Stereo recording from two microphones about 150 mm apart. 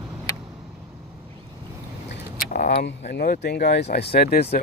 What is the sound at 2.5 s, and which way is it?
Speech, 85° left.